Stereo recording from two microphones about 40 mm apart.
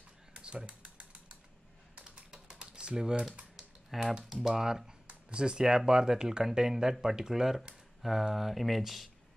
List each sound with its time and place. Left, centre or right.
0.3 s typing: right
4.2 s speech: centre
5.0 s a sound: right
5.9 s speech: centre